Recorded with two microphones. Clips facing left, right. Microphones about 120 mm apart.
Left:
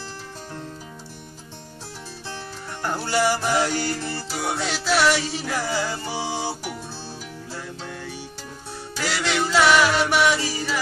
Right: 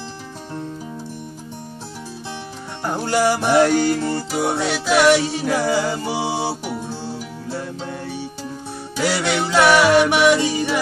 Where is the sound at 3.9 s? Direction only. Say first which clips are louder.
Right 8 dB; 20° right (ahead or behind).